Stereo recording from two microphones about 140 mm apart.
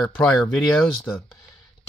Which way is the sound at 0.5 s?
5° left (ahead or behind).